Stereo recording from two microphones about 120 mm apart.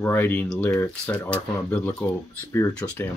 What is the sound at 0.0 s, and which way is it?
Speech, 15° left (ahead or behind).